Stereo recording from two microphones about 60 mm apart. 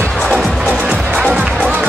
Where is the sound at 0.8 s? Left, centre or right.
Centre.